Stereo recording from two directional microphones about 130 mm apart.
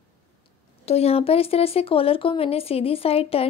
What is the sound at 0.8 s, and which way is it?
Speech, 50° left (ahead or behind).